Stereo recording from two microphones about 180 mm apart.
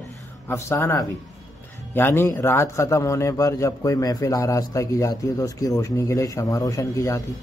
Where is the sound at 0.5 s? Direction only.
15° left (ahead or behind).